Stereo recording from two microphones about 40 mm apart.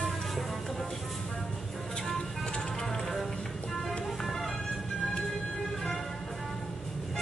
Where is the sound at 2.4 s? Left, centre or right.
Left.